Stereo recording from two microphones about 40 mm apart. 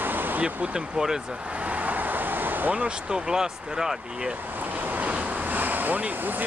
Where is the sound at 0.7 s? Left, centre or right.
Right.